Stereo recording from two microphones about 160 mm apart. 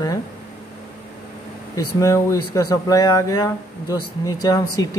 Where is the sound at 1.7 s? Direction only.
20° left (ahead or behind).